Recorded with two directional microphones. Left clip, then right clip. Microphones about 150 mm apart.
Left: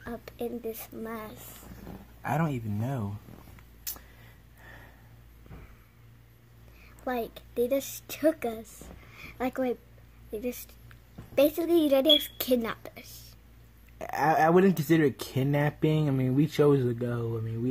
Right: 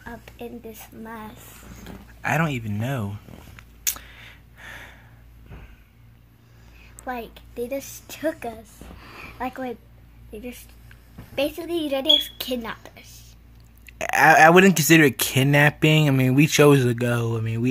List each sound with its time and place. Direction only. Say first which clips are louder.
0.0 s a woman's voice: left 1 dB; 90° left
1.7 s a sound: right 5 dB; 5° left (ahead or behind)
7.1 s speech: even; 80° left
9.2 s a woman's voice: even; 85° left
11.3 s a woman's voice: left 2 dB; 85° left
13.9 s a sound: right 11 dB; 5° right (ahead or behind)
14.5 s speech: right 8 dB; 10° right (ahead or behind)